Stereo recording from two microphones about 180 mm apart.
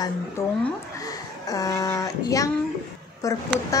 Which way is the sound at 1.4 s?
20° left (ahead or behind).